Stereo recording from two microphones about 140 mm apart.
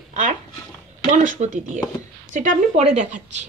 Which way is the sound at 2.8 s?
50° right (ahead or behind).